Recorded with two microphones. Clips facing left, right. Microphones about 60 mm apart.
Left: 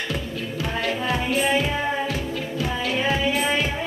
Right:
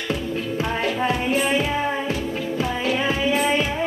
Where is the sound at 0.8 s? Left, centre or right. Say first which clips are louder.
Right 1 dB; right.